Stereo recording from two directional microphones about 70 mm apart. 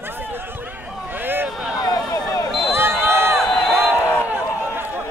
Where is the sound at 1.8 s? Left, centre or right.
Left.